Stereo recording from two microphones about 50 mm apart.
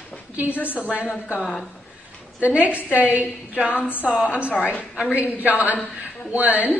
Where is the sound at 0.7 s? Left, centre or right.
Right.